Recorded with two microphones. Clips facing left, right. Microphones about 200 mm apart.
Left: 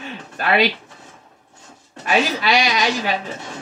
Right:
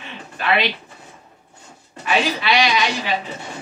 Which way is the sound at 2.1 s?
45° left (ahead or behind).